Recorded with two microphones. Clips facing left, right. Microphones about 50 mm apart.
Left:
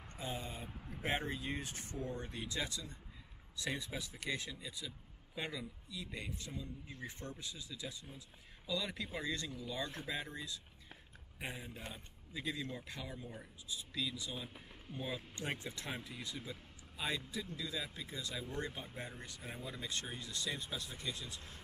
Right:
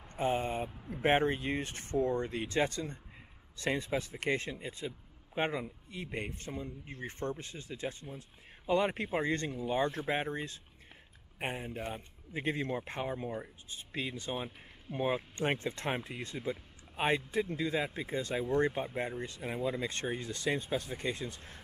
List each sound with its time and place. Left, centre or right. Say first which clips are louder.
0.1 s speech: right 12 dB; right
19.7 s speech: right 9 dB; right